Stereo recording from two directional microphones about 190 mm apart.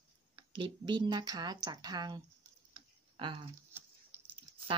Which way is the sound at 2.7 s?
25° right (ahead or behind).